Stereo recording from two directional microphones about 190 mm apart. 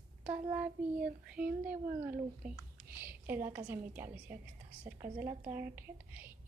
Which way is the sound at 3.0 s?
10° right (ahead or behind).